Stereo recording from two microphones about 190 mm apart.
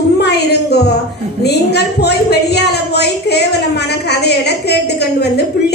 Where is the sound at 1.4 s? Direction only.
60° left (ahead or behind).